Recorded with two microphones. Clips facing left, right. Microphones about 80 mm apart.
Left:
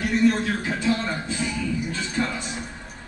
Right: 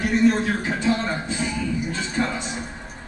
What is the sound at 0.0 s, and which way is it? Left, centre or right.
A man's voice, right.